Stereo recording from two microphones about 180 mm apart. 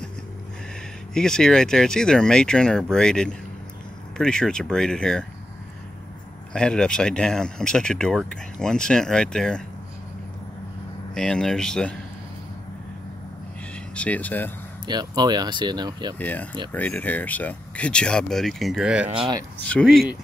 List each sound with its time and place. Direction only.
1.1 s speech: 5° left (ahead or behind)
6.5 s speech: 5° left (ahead or behind)
11.1 s speech: 5° left (ahead or behind)
13.9 s speech: 10° left (ahead or behind)
14.9 s speech: 25° right (ahead or behind)
16.2 s speech: 10° left (ahead or behind)